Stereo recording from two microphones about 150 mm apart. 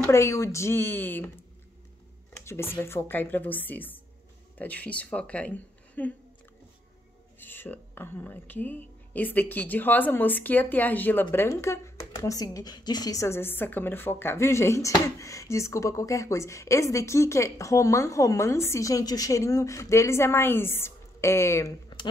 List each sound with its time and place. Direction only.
0.0 s speech: 20° left (ahead or behind)
2.4 s speech: 15° left (ahead or behind)
7.3 s a woman's voice: 15° left (ahead or behind)